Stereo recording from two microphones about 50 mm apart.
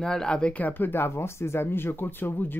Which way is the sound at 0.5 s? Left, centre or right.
Left.